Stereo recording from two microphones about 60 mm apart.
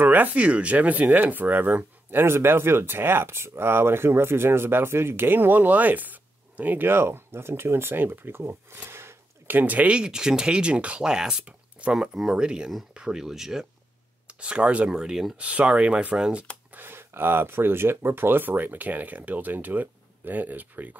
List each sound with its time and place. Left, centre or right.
0.0 s speech: right
9.6 s speech: right
16.7 s speech: right